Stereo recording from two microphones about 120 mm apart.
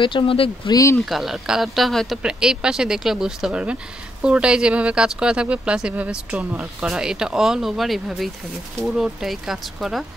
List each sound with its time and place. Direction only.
0.0 s speech: 45° left (ahead or behind)
0.9 s speech: centre (ahead or behind)